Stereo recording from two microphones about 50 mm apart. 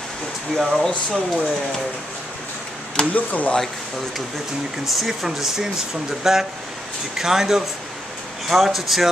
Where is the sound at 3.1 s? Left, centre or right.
Left.